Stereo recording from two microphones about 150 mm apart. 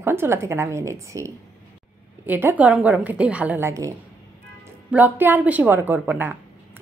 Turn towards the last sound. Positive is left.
turn(degrees=-10)  # may be behind; listen again after turning